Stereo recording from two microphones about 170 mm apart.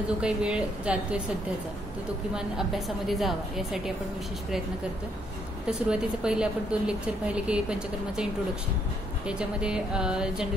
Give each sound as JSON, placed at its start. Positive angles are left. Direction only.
{"t": 0.2, "sound": "a woman's voice", "side_deg": -5}
{"t": 2.3, "sound": "a woman's voice", "side_deg": 0}
{"t": 5.7, "sound": "a woman's voice", "side_deg": -5}
{"t": 9.2, "sound": "a woman's voice", "side_deg": -5}